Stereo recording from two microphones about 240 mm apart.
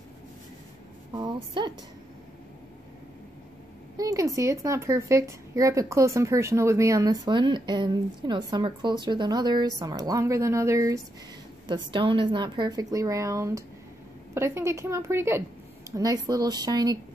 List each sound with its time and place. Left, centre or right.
1.1 s speech: centre
3.9 s speech: centre